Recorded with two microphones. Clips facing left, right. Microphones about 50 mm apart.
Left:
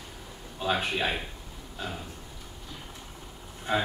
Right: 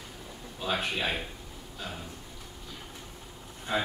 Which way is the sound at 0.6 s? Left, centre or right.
Centre.